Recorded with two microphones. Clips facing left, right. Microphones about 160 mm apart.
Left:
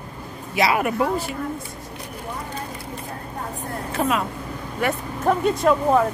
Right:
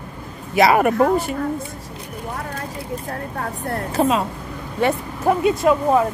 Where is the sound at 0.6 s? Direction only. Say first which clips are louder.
Right 6 dB; 45° right (ahead or behind).